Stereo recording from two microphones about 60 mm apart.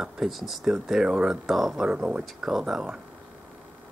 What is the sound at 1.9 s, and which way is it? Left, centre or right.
Speech, centre.